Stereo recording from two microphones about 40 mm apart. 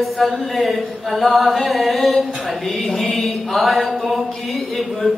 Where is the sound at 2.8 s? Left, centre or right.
Centre.